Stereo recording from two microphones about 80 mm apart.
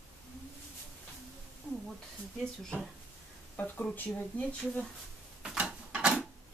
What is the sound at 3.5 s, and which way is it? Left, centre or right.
Speech, centre.